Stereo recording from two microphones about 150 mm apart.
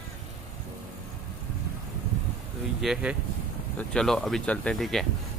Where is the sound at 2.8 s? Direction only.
5° right (ahead or behind).